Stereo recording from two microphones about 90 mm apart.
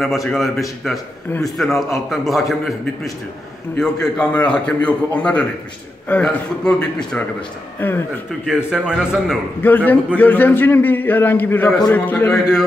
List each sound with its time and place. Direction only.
0.0 s a man's voice: centre (ahead or behind)
7.8 s a man's voice: 20° left (ahead or behind)
8.5 s a man's voice: 10° right (ahead or behind)
9.6 s a man's voice: 20° left (ahead or behind)